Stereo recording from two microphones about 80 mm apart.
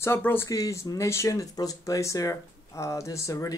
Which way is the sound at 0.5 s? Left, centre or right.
Left.